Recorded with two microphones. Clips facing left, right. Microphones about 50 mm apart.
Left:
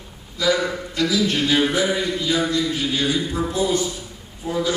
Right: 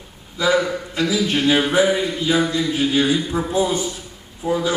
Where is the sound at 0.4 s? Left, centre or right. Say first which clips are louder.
Right 2 dB; right.